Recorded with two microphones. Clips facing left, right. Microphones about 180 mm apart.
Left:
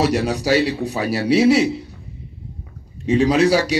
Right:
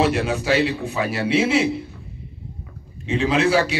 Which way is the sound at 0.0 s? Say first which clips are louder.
Left 1 dB; 40° left (ahead or behind).